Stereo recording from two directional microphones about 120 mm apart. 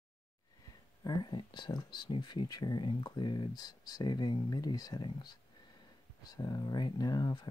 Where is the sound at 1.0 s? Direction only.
40° left (ahead or behind).